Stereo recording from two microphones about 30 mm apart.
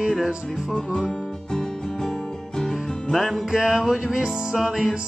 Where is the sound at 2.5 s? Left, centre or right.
Centre.